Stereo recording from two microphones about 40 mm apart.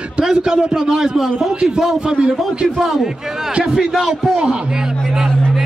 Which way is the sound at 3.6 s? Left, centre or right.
Centre.